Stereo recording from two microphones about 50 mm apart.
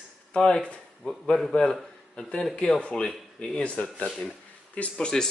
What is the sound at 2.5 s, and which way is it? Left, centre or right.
Speech, left.